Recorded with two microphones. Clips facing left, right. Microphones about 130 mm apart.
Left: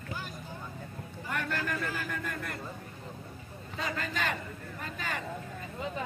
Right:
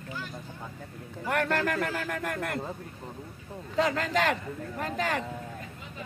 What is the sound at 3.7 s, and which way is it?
A man's voice, 75° right (ahead or behind).